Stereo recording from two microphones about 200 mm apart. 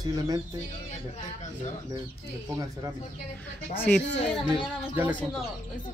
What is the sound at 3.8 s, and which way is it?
Speech, 5° left (ahead or behind).